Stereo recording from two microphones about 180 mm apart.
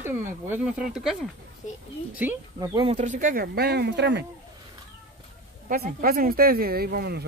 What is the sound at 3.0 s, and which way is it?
Speech, 45° right (ahead or behind).